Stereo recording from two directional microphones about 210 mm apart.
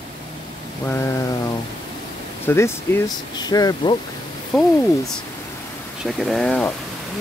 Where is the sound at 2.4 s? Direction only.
10° left (ahead or behind).